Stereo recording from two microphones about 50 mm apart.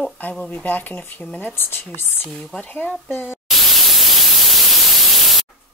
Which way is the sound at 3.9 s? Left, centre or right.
Centre.